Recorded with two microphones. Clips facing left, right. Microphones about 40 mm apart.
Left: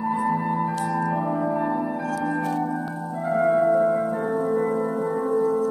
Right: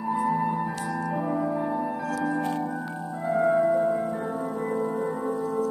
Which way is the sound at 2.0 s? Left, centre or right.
Centre.